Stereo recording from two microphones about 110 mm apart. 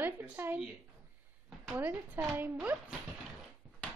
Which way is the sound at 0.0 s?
20° right (ahead or behind).